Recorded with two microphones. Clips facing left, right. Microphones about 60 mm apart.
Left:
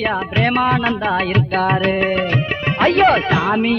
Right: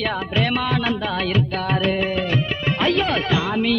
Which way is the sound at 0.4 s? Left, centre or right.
Left.